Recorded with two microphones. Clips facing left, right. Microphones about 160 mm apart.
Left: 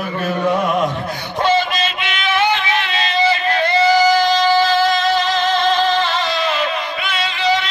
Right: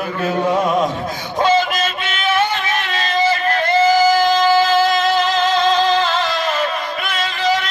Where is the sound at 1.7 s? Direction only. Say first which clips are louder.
Even; 45° right (ahead or behind).